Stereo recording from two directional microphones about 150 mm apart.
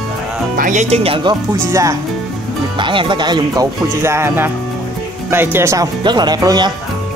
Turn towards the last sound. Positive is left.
turn(degrees=-25)  # may be behind; listen again after turning